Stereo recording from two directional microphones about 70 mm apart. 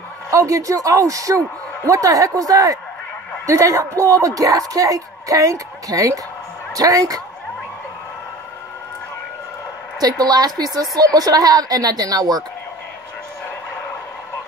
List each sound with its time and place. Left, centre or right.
0.3 s a woman's voice: right
9.9 s a woman's voice: right